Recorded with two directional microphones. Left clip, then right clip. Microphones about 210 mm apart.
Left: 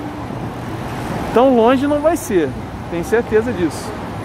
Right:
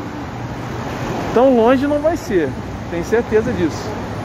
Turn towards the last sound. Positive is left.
turn(degrees=10)  # may be behind; listen again after turning